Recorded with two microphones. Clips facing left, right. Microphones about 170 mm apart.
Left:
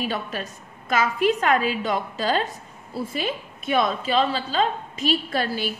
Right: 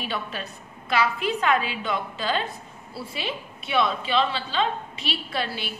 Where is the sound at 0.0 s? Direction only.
45° left (ahead or behind).